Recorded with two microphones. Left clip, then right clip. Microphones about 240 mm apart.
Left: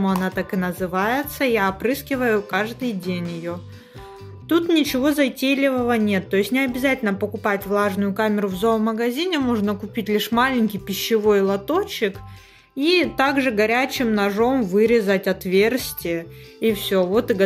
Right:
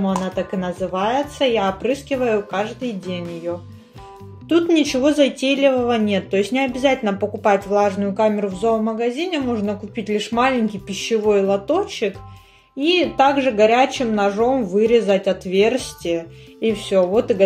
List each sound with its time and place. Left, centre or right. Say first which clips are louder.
0.0 s speech: right 1 dB; left
4.5 s speech: right 2 dB; left